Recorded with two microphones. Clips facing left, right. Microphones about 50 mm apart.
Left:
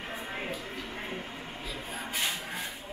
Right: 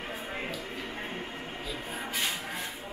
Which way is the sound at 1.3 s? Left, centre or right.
Right.